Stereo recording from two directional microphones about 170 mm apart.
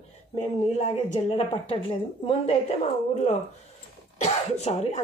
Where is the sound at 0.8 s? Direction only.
35° left (ahead or behind).